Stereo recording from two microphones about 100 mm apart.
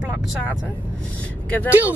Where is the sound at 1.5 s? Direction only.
15° left (ahead or behind).